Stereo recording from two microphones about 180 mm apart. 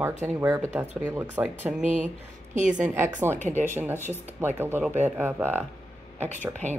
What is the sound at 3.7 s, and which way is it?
Speech, 10° right (ahead or behind).